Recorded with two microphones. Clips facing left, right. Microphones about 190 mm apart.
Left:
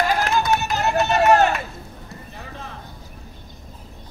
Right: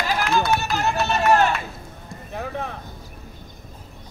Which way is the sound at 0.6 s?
20° left (ahead or behind).